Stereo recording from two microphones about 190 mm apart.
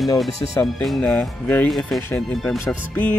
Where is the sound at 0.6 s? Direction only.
Centre (ahead or behind).